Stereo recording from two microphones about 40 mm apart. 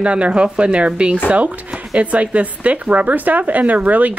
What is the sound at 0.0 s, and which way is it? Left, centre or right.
Speech, right.